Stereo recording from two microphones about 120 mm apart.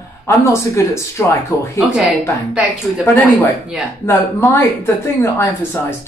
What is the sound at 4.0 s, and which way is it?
Speech, 20° left (ahead or behind).